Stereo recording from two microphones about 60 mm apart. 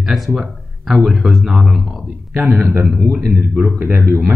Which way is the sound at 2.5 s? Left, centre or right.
Right.